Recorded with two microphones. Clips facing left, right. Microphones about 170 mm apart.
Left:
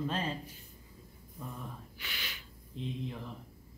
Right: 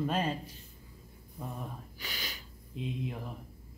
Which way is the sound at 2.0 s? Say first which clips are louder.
Right 4 dB; 40° right (ahead or behind).